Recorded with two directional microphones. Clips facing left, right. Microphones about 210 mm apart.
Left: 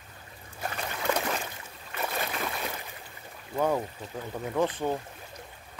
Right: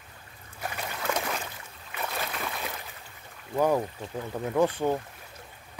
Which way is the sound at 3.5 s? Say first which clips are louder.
Right 3 dB; 10° right (ahead or behind).